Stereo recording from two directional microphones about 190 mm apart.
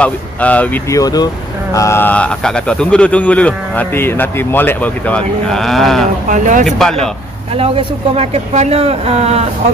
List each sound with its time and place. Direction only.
0.0 s speech: 5° left (ahead or behind)
6.2 s speech: 40° right (ahead or behind)
6.6 s speech: 5° left (ahead or behind)
7.5 s speech: 30° right (ahead or behind)